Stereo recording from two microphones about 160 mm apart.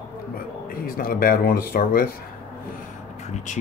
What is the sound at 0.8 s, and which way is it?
Speech, 65° left (ahead or behind).